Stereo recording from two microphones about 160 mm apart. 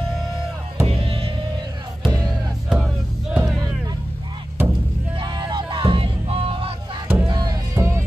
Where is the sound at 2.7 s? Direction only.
5° right (ahead or behind).